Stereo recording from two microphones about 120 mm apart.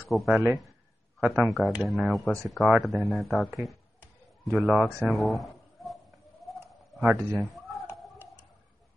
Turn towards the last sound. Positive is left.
turn(degrees=0)  # may be behind; listen again after turning